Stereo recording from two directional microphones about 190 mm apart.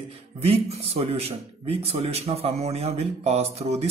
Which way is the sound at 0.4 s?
35° right (ahead or behind).